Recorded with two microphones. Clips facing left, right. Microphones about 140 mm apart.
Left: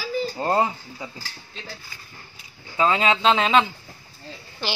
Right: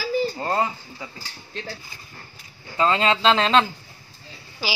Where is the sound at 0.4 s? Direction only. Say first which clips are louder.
Left 2 dB; 10° left (ahead or behind).